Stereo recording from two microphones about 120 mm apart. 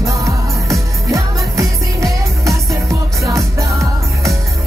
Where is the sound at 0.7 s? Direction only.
25° right (ahead or behind).